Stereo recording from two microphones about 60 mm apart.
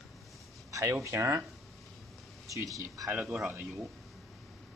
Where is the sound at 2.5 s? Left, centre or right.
Right.